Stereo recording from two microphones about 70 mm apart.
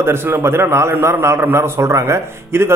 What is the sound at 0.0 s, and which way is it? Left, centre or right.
A man's voice, right.